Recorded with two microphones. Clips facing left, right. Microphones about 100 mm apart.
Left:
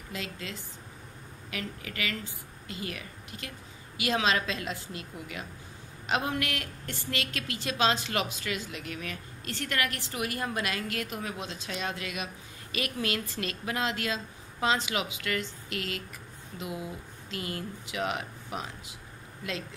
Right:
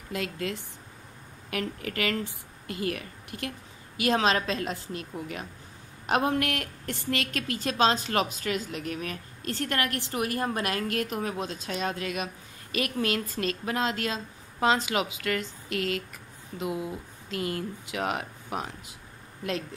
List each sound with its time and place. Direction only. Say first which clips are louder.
0.1 s a woman's voice: right 7 dB; 55° right (ahead or behind)
17.3 s a woman's voice: right 5 dB; 45° right (ahead or behind)